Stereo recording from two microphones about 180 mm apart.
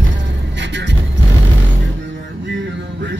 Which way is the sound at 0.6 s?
80° right.